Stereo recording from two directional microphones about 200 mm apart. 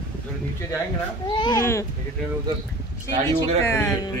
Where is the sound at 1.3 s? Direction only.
20° left (ahead or behind).